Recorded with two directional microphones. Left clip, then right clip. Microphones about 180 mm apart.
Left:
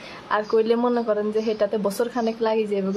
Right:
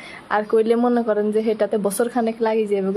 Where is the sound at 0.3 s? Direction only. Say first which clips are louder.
Right 2 dB; 15° right (ahead or behind).